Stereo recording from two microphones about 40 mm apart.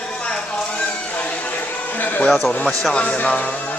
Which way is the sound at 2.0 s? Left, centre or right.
Left.